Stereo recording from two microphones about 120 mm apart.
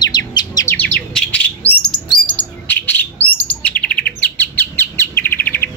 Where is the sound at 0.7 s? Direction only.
10° left (ahead or behind).